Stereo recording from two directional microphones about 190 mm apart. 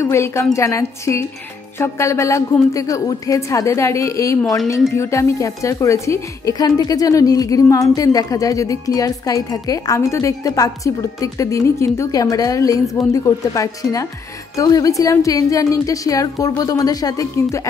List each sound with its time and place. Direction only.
0.0 s a woman's voice: 15° left (ahead or behind)